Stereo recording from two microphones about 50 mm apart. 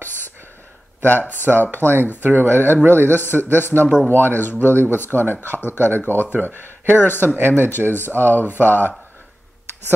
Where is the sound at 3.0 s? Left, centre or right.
Left.